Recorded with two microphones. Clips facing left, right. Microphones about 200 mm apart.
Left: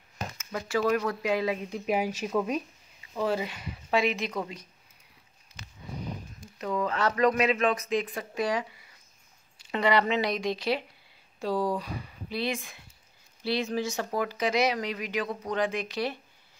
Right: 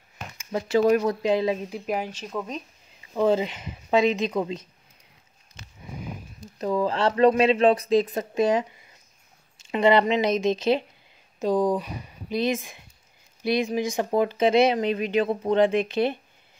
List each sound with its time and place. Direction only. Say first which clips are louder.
0.5 s speech: right 7 dB; 25° right (ahead or behind)
1.9 s speech: left 2 dB; 10° left (ahead or behind)
3.2 s speech: right 7 dB; 20° right (ahead or behind)
6.6 s a man's voice: right 5 dB; 30° right (ahead or behind)
8.4 s speech: right 7 dB; 25° right (ahead or behind)
9.7 s speech: right 6 dB; 25° right (ahead or behind)